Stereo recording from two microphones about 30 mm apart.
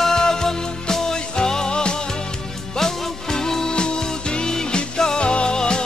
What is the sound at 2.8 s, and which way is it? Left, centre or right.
Music, centre.